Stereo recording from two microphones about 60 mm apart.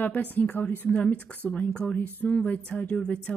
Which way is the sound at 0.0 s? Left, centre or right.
Left.